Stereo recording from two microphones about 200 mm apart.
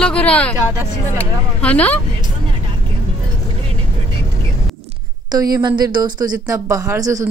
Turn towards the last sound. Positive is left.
turn(degrees=-15)  # may be behind; listen again after turning